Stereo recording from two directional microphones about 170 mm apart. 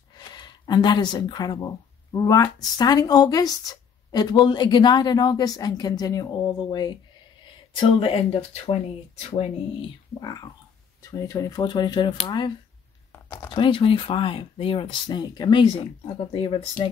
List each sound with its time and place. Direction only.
0.3 s speech: 25° left (ahead or behind)
11.0 s speech: 20° left (ahead or behind); by 16.6 s 35° left (ahead or behind)